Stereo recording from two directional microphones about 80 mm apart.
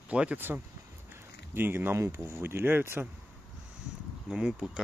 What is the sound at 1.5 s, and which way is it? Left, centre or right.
Speech, right.